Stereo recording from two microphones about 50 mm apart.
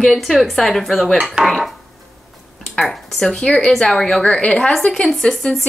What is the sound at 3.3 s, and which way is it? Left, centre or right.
A woman's voice, centre.